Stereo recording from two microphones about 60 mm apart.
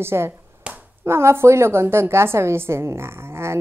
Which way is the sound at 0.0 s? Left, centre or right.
Right.